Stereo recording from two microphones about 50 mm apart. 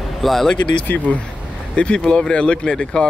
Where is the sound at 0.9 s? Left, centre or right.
Left.